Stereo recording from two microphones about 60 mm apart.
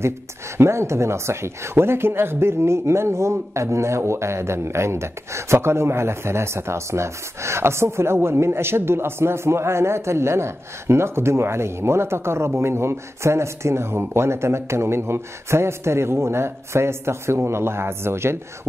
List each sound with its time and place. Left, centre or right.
0.6 s speech: right